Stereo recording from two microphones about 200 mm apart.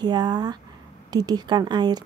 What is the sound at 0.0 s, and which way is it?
A woman's voice, 20° right (ahead or behind).